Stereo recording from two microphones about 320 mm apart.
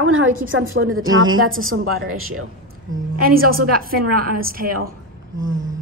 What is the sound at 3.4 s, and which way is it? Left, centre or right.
A woman's voice, right.